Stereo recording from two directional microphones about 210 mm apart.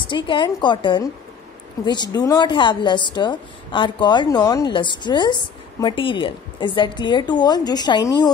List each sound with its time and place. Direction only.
0.1 s a woman's voice: 20° left (ahead or behind)